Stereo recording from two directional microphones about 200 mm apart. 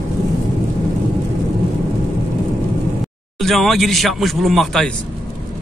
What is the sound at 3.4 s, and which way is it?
Speech, centre (ahead or behind).